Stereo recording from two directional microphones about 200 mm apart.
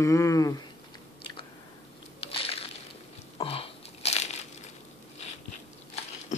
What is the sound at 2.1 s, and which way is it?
Crunch, 30° left (ahead or behind).